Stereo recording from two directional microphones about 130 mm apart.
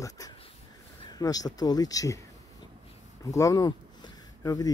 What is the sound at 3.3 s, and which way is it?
Speech, 25° left (ahead or behind).